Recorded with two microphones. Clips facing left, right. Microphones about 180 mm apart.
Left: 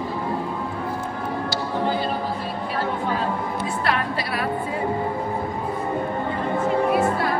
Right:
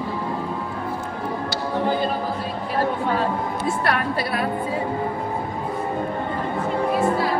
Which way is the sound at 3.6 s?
50° right (ahead or behind).